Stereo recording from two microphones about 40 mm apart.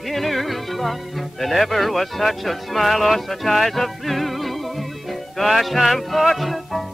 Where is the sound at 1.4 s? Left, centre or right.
Centre.